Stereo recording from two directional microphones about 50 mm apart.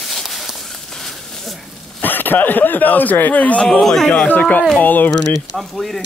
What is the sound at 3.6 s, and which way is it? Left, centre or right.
Speech, centre.